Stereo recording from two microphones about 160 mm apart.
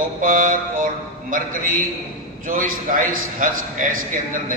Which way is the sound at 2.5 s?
55° right (ahead or behind).